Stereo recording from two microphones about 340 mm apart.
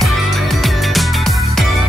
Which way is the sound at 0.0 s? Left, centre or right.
Centre.